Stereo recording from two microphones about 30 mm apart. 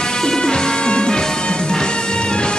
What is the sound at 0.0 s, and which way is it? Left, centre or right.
Music, centre.